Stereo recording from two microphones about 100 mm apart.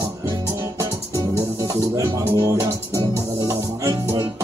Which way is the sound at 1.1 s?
30° right (ahead or behind).